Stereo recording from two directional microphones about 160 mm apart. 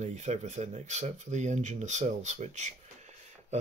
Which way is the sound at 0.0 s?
45° right (ahead or behind).